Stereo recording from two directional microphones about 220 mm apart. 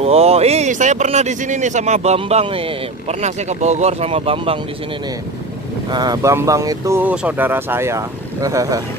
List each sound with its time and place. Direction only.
0.0 s speech: 25° right (ahead or behind)
5.9 s speech: 20° right (ahead or behind)